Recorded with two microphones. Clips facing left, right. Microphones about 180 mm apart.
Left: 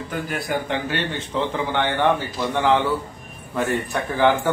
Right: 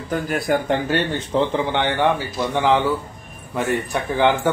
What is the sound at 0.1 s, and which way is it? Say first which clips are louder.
Speech: right 6 dB; 45° right (ahead or behind).